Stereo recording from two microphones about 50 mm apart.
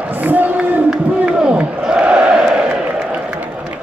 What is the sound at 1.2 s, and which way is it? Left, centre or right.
Battle cry, right.